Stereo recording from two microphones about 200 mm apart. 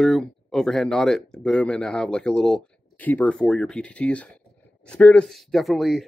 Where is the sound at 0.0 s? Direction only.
Centre (ahead or behind).